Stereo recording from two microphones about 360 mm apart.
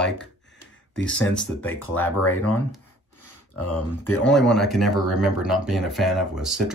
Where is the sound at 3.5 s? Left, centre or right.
Left.